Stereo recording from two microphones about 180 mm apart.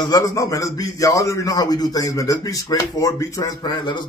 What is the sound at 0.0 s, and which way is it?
A man's voice, 20° left (ahead or behind).